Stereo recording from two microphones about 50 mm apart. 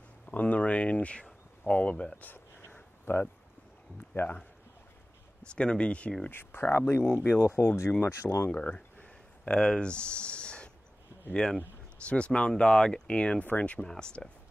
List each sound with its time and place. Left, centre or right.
0.3 s speech: left
3.1 s speech: left
4.1 s speech: left
5.5 s speech: centre
6.3 s speech: left
8.5 s a sound: left
12.1 s speech: centre
13.7 s speech: centre